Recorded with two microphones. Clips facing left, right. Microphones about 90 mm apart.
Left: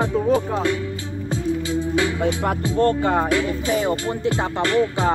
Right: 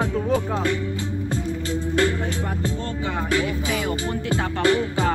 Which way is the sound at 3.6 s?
35° left (ahead or behind).